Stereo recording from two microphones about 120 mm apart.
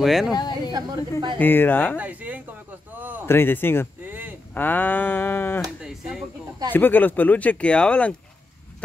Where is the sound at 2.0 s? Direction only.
15° right (ahead or behind).